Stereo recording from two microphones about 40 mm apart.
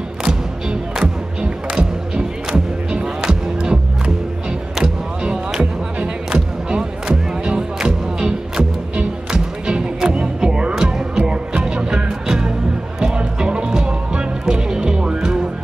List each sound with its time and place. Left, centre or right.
0.2 s music: centre